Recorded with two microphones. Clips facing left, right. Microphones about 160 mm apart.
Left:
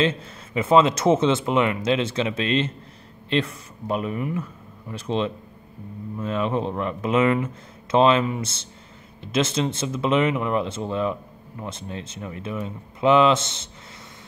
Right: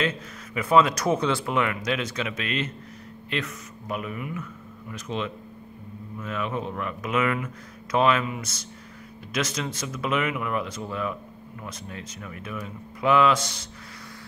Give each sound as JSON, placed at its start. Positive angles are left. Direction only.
{"t": 0.0, "sound": "speech", "side_deg": 25}